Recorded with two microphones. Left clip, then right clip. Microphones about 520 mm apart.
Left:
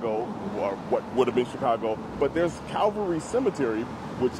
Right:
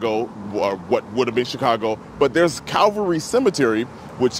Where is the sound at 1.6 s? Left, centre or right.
Right.